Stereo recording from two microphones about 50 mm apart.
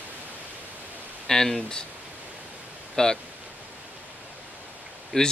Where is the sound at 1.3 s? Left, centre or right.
Centre.